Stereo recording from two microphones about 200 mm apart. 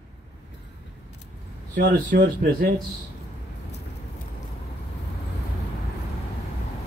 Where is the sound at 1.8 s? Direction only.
45° right (ahead or behind).